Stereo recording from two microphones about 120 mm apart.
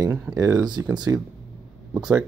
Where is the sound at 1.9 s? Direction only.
10° right (ahead or behind).